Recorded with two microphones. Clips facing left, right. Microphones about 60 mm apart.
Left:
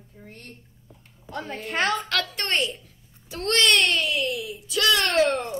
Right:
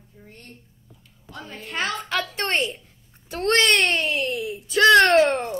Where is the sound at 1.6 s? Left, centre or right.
Centre.